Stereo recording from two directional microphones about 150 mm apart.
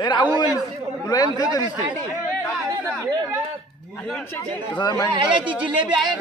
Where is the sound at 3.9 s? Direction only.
5° left (ahead or behind).